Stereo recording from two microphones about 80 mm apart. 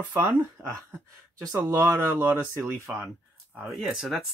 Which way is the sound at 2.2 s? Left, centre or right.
Right.